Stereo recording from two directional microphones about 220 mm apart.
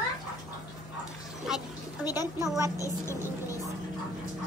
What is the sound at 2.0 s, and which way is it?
A woman's voice, 15° left (ahead or behind).